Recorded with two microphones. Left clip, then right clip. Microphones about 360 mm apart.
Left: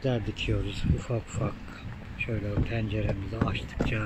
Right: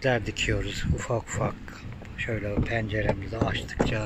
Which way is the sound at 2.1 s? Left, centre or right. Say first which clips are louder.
Right 3 dB; centre.